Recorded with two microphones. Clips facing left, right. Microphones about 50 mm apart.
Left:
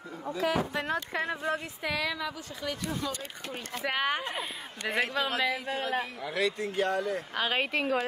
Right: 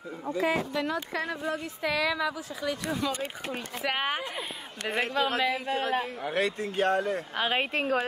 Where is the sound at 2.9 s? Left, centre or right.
Right.